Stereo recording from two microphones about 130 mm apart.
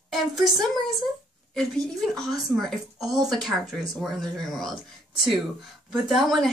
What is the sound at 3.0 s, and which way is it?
Speech, 30° right (ahead or behind).